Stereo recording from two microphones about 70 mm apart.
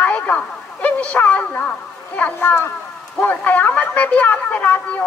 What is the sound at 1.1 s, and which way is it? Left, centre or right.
A woman's voice, centre.